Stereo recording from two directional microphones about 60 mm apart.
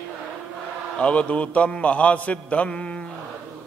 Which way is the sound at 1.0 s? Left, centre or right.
Left.